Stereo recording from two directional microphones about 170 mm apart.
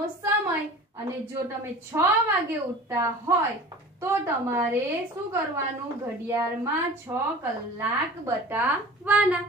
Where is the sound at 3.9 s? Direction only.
15° right (ahead or behind).